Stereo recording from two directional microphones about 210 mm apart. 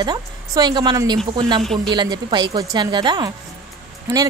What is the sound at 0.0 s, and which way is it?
A woman's voice, 20° right (ahead or behind).